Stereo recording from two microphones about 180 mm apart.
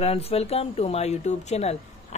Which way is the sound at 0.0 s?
35° left (ahead or behind).